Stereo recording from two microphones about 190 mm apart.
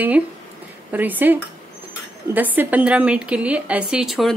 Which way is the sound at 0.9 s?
10° right (ahead or behind).